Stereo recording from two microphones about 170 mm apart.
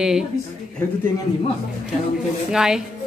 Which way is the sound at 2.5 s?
5° right (ahead or behind).